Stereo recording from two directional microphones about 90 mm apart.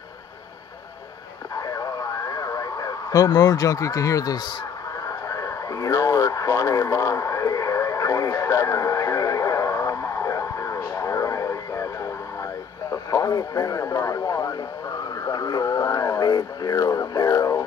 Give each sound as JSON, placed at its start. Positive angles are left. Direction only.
{"t": 1.6, "sound": "radio", "side_deg": 40}
{"t": 12.9, "sound": "speech", "side_deg": 40}